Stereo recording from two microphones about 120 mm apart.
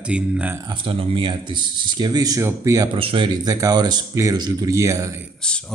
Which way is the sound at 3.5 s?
30° right (ahead or behind).